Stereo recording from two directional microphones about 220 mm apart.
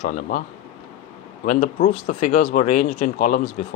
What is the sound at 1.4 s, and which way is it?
Speech, 35° left (ahead or behind).